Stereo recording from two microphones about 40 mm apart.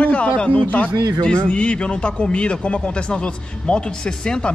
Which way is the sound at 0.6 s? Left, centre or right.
Left.